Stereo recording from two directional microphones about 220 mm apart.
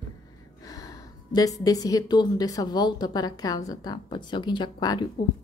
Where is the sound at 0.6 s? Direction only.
15° left (ahead or behind).